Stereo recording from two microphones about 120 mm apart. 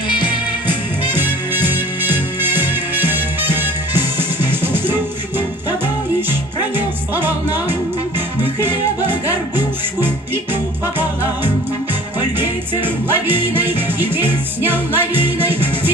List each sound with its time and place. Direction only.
0.7 s music: 15° right (ahead or behind)
7.2 s music: 15° right (ahead or behind)
9.9 s music: 20° right (ahead or behind)